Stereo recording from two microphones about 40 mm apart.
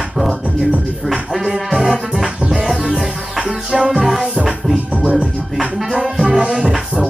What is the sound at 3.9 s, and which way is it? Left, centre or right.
Music, centre.